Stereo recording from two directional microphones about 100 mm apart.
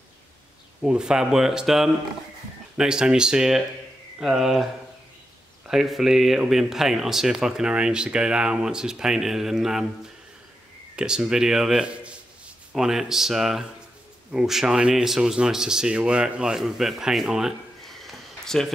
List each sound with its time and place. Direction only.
0.8 s speech: 5° right (ahead or behind)
5.7 s speech: 5° right (ahead or behind)